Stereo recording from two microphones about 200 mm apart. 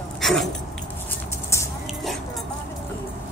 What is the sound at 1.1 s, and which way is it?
Music, 15° left (ahead or behind).